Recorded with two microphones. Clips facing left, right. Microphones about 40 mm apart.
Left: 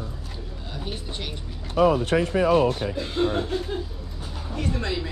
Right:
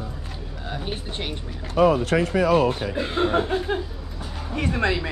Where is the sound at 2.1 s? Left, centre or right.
Right.